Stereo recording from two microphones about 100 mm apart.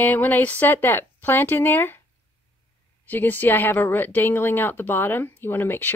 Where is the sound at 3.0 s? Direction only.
20° left (ahead or behind).